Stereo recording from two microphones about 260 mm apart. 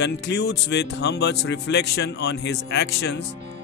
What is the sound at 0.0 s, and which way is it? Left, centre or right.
Speech, left.